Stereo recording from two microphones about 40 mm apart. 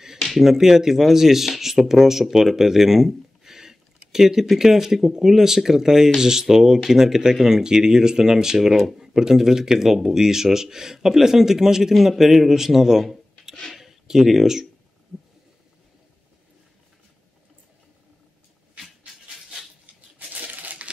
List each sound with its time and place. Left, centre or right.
0.2 s finger snapping: centre
0.5 s speech: centre
13.7 s a sound: centre
20.2 s crushing: right